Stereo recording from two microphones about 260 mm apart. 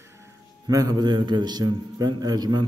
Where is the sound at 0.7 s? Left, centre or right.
Centre.